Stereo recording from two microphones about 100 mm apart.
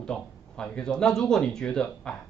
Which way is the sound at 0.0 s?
10° left (ahead or behind).